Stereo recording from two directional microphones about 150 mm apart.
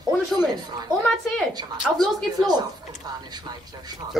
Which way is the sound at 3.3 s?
30° right (ahead or behind).